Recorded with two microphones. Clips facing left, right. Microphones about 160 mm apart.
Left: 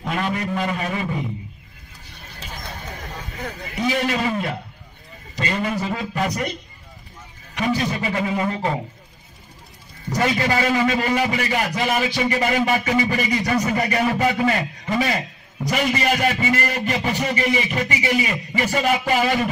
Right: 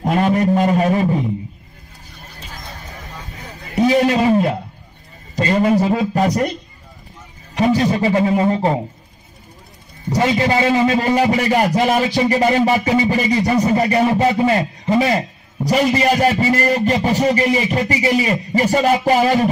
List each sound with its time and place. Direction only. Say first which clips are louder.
0.0 s speech: right 9 dB; 40° right (ahead or behind)
3.7 s a man's voice: right 8 dB; 40° right (ahead or behind)
5.3 s music: right 8 dB; 40° right (ahead or behind)
5.7 s speech: right 10 dB; 35° right (ahead or behind)
7.5 s speech: right 7 dB; 35° right (ahead or behind)
10.0 s a man's voice: right 4 dB; 20° right (ahead or behind)
11.0 s speech: right 6 dB; 35° right (ahead or behind)